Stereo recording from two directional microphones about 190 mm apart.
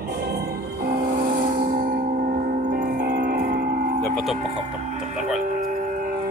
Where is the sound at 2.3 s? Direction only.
45° right (ahead or behind).